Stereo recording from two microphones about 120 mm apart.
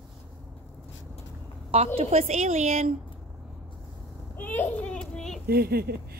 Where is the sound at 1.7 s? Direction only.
55° right (ahead or behind); by 2.9 s 80° right.